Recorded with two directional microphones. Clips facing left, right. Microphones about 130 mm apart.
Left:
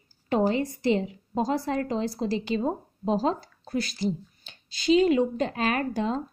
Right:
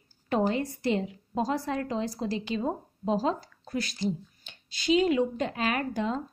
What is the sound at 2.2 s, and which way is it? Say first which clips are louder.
A woman's voice: left 3 dB; 30° left (ahead or behind).